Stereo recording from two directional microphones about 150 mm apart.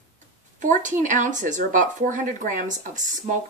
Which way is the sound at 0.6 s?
55° right (ahead or behind).